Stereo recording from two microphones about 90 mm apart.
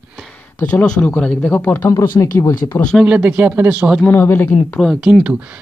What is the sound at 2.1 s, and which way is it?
Speech, 45° left (ahead or behind).